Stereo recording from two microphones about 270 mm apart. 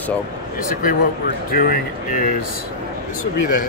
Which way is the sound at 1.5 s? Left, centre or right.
Left.